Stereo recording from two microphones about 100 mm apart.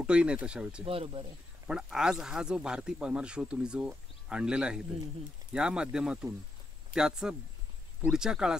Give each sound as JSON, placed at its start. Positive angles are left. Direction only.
{"t": 0.0, "sound": "speech", "side_deg": -10}
{"t": 0.8, "sound": "speech", "side_deg": -70}
{"t": 1.7, "sound": "speech", "side_deg": -10}